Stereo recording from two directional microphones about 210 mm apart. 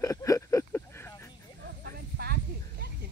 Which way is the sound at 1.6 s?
50° right (ahead or behind).